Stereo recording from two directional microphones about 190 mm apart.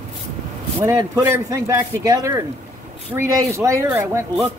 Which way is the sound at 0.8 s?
15° right (ahead or behind).